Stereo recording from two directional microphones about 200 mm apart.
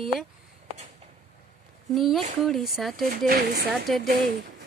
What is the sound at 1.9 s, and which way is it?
Speech, centre (ahead or behind).